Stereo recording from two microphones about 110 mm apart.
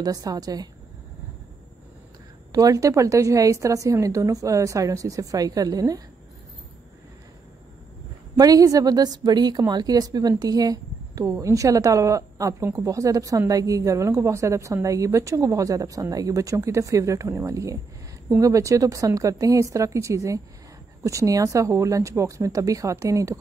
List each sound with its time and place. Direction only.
0.0 s a woman's voice: 35° right (ahead or behind)
2.5 s a woman's voice: 35° right (ahead or behind)
8.4 s a woman's voice: 35° right (ahead or behind)